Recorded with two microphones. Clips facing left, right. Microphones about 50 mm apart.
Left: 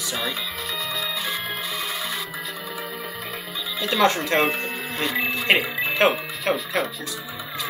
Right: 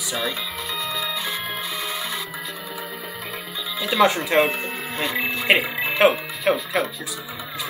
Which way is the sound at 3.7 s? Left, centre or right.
Centre.